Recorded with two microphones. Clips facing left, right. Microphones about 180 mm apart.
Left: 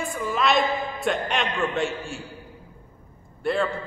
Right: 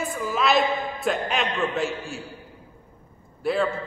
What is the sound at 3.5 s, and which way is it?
Speech, centre (ahead or behind).